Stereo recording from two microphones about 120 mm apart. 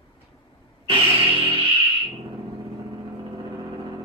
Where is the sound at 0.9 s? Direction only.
55° right (ahead or behind).